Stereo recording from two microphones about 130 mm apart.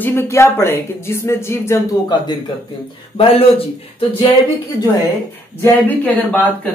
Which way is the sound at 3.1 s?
45° left (ahead or behind).